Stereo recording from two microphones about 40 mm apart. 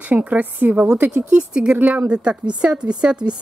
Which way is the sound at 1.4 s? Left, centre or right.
Right.